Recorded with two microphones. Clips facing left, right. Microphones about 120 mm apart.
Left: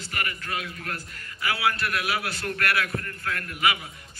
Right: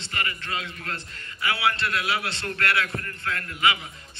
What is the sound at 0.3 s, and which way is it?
A man's voice, 25° right (ahead or behind).